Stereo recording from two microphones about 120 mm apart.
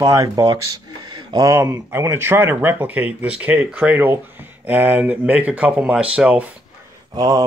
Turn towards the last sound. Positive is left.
turn(degrees=-30)  # may be behind; listen again after turning